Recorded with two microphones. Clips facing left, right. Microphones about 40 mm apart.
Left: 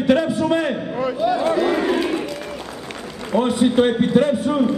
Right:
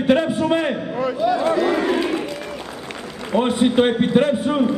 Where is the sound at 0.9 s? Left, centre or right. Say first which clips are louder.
Even; centre.